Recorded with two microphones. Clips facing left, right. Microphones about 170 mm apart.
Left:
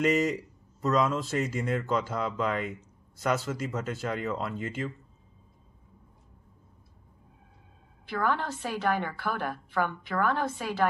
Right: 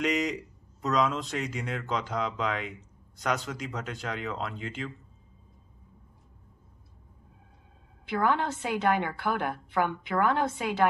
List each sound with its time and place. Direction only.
0.0 s speech: 5° left (ahead or behind)
8.1 s a woman's voice: 15° right (ahead or behind)